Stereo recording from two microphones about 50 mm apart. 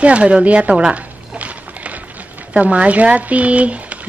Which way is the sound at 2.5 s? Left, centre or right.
Right.